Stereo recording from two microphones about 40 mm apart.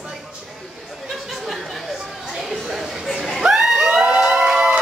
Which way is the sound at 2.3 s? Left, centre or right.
Centre.